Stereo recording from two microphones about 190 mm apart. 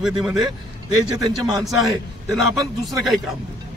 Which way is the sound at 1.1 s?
15° right (ahead or behind).